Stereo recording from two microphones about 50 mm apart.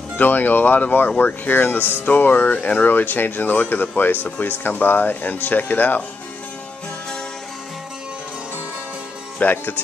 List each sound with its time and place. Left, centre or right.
0.2 s speech: left
9.4 s speech: left